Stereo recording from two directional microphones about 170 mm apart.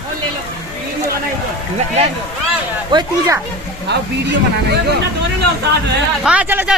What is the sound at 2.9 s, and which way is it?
Speech, 30° right (ahead or behind).